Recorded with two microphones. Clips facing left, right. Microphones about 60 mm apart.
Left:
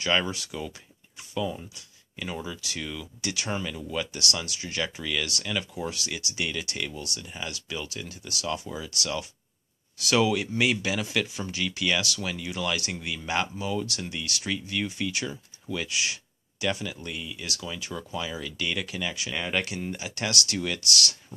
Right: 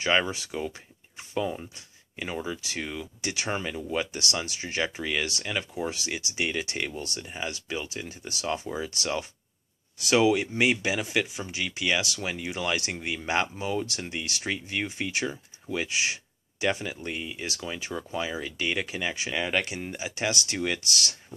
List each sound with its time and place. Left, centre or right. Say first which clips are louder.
0.0 s speech: right 1 dB; right
19.3 s speech: right 2 dB; centre
19.6 s speech: even; centre